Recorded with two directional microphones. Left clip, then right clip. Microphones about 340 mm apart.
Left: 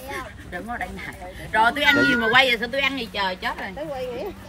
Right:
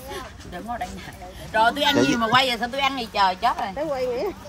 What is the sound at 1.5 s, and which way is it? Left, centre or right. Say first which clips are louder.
Speech: left 1 dB; centre.